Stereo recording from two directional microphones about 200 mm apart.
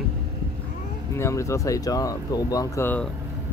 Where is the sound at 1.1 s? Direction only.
15° left (ahead or behind).